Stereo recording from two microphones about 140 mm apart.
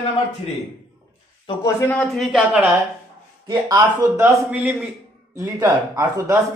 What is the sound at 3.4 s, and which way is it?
Speech, 30° right (ahead or behind).